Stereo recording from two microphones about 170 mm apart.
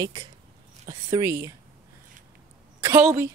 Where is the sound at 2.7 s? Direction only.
15° right (ahead or behind).